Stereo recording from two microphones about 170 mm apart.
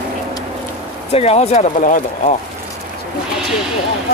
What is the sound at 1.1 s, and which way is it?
Speech, 35° left (ahead or behind).